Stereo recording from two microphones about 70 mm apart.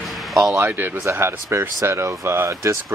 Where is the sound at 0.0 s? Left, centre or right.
Centre.